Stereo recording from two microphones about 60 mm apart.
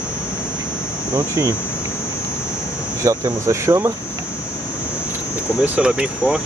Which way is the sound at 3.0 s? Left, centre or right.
Right.